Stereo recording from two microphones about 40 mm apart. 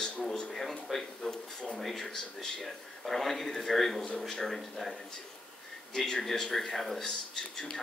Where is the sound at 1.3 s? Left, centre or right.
Centre.